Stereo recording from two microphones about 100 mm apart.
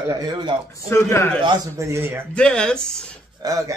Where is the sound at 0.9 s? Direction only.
30° left (ahead or behind).